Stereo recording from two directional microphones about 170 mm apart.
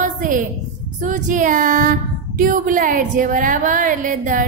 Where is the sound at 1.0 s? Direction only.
50° right (ahead or behind).